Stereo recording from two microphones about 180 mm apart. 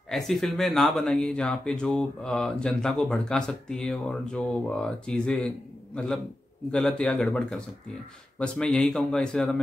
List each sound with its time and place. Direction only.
0.1 s speech: centre (ahead or behind)